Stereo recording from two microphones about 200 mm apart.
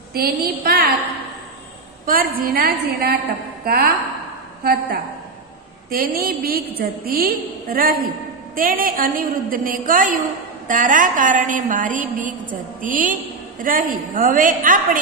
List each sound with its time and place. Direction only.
0.1 s a woman's voice: 50° right (ahead or behind)
2.0 s a woman's voice: 45° right (ahead or behind)
5.9 s a woman's voice: 45° right (ahead or behind)